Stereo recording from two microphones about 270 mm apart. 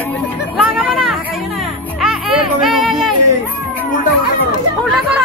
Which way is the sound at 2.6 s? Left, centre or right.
Centre.